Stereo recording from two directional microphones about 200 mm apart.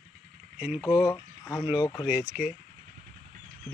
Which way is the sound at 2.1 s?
5° right (ahead or behind).